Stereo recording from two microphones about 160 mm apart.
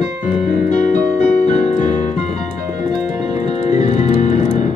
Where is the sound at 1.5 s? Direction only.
50° left (ahead or behind).